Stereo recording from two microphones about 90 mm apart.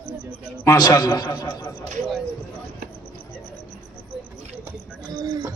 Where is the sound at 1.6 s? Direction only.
30° left (ahead or behind).